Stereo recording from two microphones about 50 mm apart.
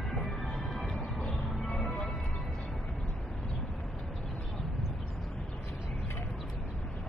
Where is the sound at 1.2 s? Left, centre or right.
Left.